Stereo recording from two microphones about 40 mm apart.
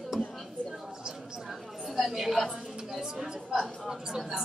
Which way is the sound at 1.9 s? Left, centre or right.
Centre.